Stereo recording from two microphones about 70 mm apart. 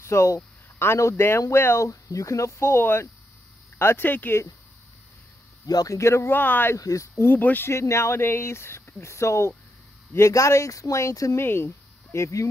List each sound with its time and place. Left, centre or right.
0.0 s speech: left
5.7 s speech: left
5.9 s speech: left
6.3 s speech: left
6.8 s speech: left
7.2 s speech: left
7.7 s speech: left
11.3 s speech: left